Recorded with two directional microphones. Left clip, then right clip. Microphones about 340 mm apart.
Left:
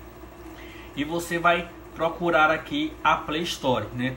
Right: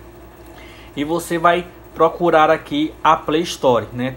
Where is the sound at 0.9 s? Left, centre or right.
Centre.